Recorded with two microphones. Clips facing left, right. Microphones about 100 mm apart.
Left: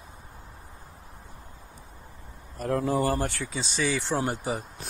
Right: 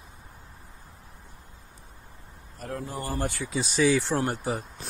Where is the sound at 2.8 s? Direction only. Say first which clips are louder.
Left 8 dB; 90° left.